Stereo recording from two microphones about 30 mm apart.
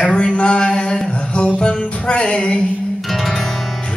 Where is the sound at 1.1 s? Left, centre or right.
Left.